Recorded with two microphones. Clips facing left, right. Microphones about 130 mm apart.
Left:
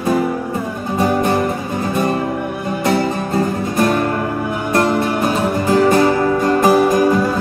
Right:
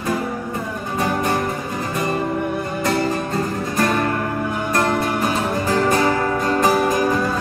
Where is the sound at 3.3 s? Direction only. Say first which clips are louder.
Left 4 dB; 25° left (ahead or behind).